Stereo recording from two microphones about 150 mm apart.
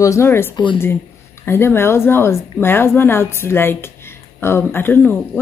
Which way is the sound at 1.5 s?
15° left (ahead or behind).